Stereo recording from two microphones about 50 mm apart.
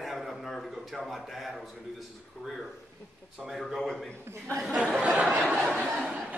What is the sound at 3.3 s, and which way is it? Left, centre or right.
Speech, centre.